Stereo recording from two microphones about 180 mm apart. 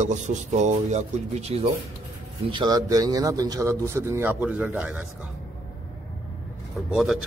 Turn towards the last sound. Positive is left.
turn(degrees=-5)  # may be behind; listen again after turning